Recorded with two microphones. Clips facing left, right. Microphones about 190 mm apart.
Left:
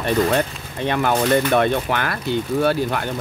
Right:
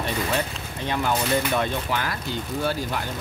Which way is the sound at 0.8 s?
65° left (ahead or behind).